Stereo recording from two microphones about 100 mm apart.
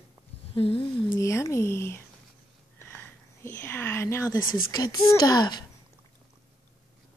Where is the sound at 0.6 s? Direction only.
70° left (ahead or behind).